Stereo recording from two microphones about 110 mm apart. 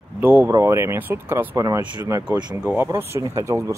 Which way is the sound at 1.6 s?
40° right (ahead or behind).